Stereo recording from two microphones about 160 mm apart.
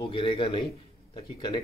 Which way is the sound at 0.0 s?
30° left (ahead or behind).